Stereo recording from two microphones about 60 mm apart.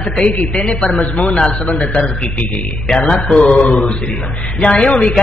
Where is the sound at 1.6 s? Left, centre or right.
Left.